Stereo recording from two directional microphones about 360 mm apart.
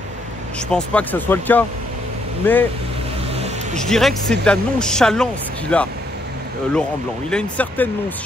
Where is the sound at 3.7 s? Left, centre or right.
Centre.